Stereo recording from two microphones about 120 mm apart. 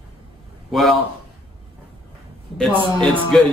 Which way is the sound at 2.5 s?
5° left (ahead or behind).